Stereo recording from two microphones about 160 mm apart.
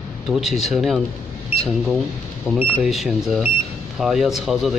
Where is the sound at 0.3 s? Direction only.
Centre (ahead or behind).